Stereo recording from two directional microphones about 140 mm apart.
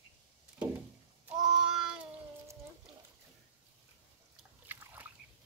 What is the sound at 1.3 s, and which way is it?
Child singing, 5° right (ahead or behind).